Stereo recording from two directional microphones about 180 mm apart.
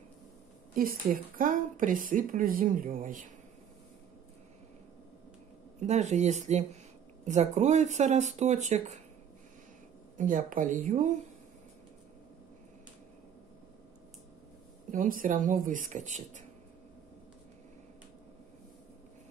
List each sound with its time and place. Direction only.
0.7 s a woman's voice: 50° right (ahead or behind)
5.8 s speech: 40° right (ahead or behind)
10.1 s a woman's voice: 45° right (ahead or behind)
14.9 s a woman's voice: 50° right (ahead or behind)